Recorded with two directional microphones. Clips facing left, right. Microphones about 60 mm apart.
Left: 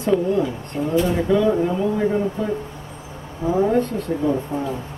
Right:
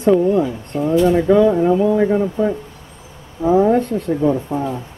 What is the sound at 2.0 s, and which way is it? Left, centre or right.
Speech, right.